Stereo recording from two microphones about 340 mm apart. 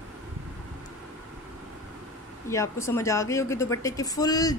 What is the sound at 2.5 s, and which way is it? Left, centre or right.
Speech, centre.